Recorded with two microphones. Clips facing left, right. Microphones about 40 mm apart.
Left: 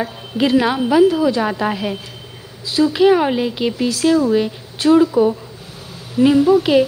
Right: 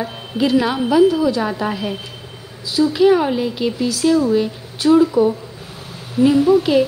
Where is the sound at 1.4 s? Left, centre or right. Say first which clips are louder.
Left 2 dB; left.